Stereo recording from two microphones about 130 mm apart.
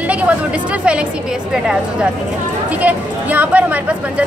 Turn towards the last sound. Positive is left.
turn(degrees=-10)  # may be behind; listen again after turning